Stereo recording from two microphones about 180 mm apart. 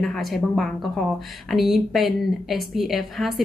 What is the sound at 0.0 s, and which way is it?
Speech, centre (ahead or behind).